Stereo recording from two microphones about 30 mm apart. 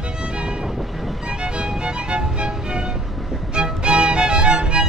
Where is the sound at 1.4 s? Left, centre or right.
Right.